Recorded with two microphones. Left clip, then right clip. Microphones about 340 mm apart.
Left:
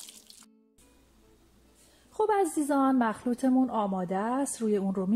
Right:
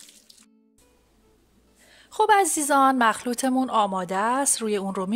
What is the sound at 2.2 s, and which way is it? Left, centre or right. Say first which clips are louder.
A woman's voice: right 7 dB; right.